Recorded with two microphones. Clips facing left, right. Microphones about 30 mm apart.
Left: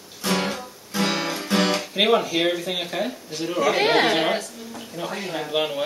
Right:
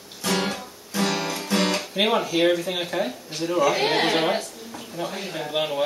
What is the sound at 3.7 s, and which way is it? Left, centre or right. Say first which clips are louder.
Speech: left 3 dB; left.